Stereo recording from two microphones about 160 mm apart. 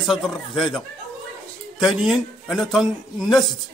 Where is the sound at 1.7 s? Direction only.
Centre (ahead or behind).